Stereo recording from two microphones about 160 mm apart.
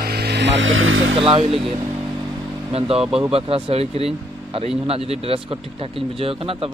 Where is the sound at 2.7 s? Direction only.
35° right (ahead or behind).